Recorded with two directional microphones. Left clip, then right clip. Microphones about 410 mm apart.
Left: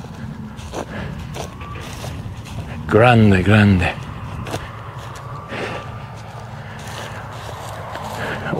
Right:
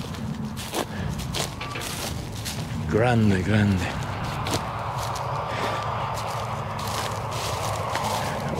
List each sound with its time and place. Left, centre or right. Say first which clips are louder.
2.9 s speech: left 10 dB; left